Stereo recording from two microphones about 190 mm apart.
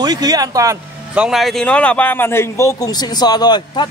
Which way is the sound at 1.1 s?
5° right (ahead or behind).